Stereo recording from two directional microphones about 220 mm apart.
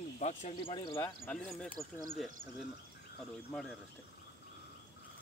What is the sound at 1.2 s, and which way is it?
Speech, 5° left (ahead or behind).